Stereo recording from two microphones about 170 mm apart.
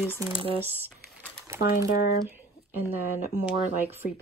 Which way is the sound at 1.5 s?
15° right (ahead or behind).